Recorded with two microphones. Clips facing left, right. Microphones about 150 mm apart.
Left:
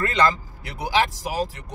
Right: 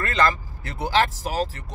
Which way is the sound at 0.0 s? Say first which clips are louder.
Left 1 dB; 20° left (ahead or behind).